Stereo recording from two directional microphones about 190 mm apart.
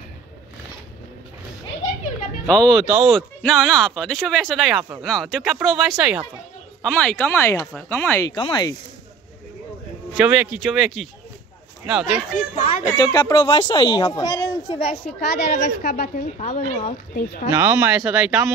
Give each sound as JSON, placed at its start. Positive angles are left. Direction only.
{"t": 2.4, "sound": "speech", "side_deg": 5}
{"t": 6.8, "sound": "speech", "side_deg": 5}
{"t": 8.4, "sound": "speech", "side_deg": 20}
{"t": 10.1, "sound": "speech", "side_deg": -5}
{"t": 12.9, "sound": "speech", "side_deg": 20}
{"t": 15.1, "sound": "a woman's voice", "side_deg": 50}
{"t": 16.3, "sound": "speech", "side_deg": 35}
{"t": 17.1, "sound": "a woman's voice", "side_deg": 50}
{"t": 17.5, "sound": "speech", "side_deg": -10}